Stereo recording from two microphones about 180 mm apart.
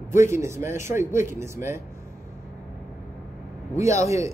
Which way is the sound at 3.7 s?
15° right (ahead or behind).